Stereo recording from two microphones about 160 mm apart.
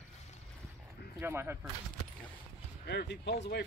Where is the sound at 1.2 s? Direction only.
15° right (ahead or behind).